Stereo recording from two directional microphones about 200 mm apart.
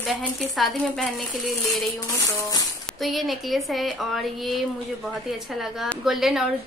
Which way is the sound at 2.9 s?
Centre (ahead or behind).